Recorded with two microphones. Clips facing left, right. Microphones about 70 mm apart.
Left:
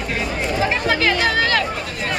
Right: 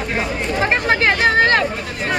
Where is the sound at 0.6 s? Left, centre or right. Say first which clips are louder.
Right 3 dB; right.